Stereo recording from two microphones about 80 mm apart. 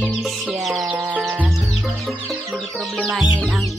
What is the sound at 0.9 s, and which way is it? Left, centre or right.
Music, centre.